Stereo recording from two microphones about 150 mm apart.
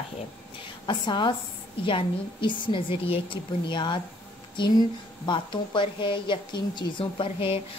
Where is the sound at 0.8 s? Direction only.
30° left (ahead or behind).